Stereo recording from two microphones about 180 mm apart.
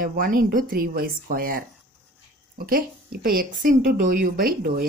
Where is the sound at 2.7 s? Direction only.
55° right (ahead or behind).